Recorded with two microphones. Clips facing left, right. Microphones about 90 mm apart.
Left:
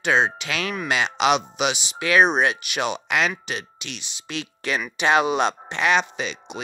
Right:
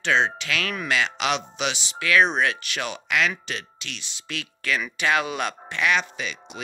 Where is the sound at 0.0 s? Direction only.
15° left (ahead or behind).